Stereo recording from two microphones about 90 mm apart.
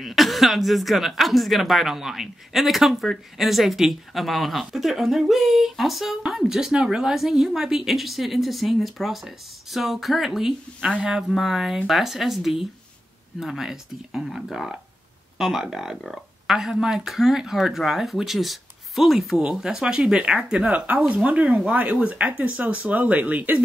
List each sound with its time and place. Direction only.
0.0 s speech: centre (ahead or behind); by 23.6 s 20° right (ahead or behind)